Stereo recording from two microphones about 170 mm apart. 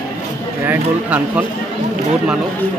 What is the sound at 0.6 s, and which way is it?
Speech, 10° right (ahead or behind).